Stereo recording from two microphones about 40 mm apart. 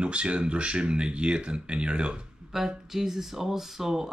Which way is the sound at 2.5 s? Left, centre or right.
Centre.